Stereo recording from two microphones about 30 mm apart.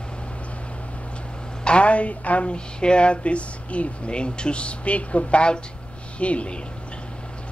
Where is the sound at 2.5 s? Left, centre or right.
Left.